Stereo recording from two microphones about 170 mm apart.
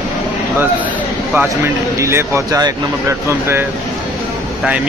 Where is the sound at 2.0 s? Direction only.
15° right (ahead or behind).